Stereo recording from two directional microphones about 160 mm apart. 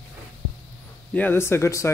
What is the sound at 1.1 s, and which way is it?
Speech, 15° left (ahead or behind).